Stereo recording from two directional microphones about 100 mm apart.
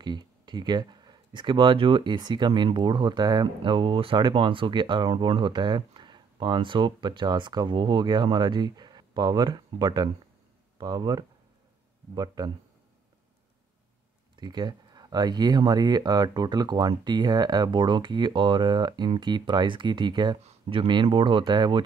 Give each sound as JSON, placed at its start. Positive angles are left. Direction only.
{"t": 0.0, "sound": "speech", "side_deg": -50}
{"t": 12.4, "sound": "speech", "side_deg": -45}
{"t": 14.3, "sound": "speech", "side_deg": -45}
{"t": 20.3, "sound": "speech", "side_deg": -75}